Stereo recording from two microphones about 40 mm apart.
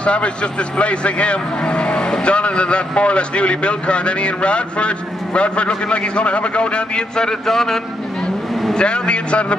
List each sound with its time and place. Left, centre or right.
0.0 s a man's voice: left; by 7.8 s centre
8.7 s a man's voice: left